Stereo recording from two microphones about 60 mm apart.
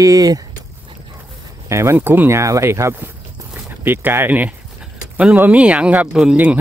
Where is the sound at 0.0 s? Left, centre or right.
Right.